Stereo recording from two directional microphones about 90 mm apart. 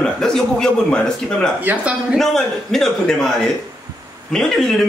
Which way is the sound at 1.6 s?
15° right (ahead or behind).